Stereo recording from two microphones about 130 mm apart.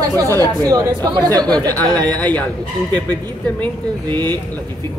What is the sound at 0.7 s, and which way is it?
Speech, 30° right (ahead or behind).